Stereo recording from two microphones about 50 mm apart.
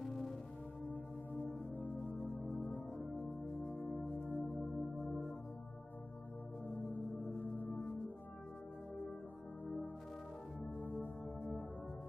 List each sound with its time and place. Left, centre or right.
0.8 s music: left
4.3 s singing bowl: left
4.9 s music: centre
6.7 s singing bowl: left
10.8 s music: left